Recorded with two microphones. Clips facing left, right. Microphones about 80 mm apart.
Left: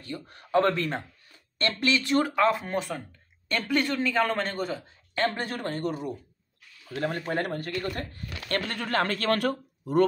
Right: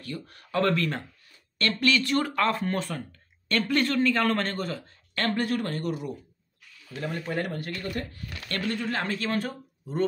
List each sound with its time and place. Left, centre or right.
0.0 s speech: left
7.0 s speech: left
8.7 s a man's voice: left